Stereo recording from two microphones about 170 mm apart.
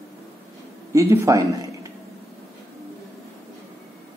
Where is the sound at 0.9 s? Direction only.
20° right (ahead or behind).